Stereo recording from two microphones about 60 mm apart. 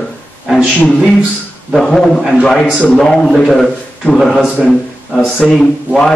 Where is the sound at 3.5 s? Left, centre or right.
Centre.